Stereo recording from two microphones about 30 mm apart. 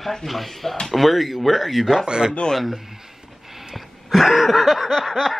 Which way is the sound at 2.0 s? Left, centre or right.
Right.